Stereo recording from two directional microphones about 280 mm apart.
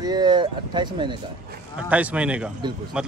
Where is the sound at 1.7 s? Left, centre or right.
Centre.